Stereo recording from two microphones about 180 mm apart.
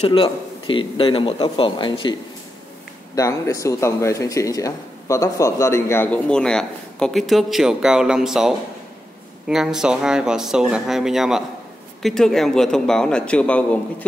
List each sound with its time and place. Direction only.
0.0 s a man's voice: 30° left (ahead or behind)
3.2 s speech: 20° left (ahead or behind)